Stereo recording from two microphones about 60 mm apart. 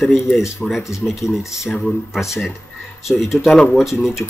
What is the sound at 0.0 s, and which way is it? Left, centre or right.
Speech, centre.